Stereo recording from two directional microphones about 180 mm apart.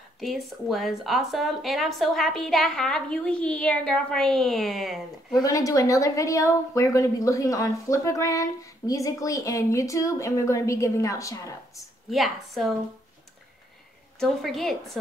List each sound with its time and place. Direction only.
0.2 s speech: centre (ahead or behind)
5.4 s a woman's voice: 20° left (ahead or behind)
12.1 s speech: centre (ahead or behind)
14.2 s speech: centre (ahead or behind)